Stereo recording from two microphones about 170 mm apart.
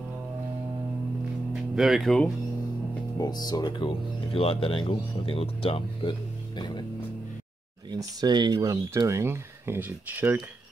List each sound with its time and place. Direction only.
1.5 s speech: centre (ahead or behind)
3.2 s speech: 25° left (ahead or behind)
7.9 s speech: 25° right (ahead or behind)